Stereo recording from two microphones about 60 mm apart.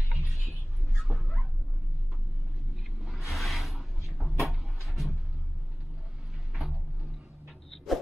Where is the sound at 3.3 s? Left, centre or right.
Centre.